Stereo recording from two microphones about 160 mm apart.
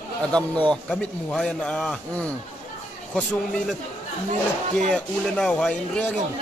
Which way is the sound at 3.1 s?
5° left (ahead or behind).